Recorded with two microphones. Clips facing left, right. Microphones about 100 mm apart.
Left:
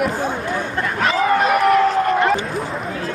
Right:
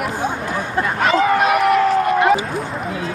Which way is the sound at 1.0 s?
Centre (ahead or behind).